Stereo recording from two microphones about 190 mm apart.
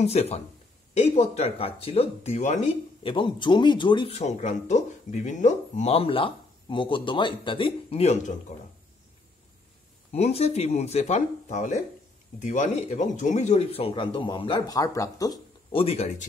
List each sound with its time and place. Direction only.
0.0 s speech: 35° left (ahead or behind)
10.1 s speech: 35° left (ahead or behind)